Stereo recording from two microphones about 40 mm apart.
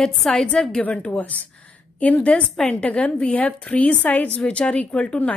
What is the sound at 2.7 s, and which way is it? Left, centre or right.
A woman's voice, left.